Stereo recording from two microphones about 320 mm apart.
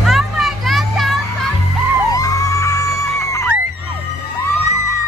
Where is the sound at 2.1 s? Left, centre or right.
Centre.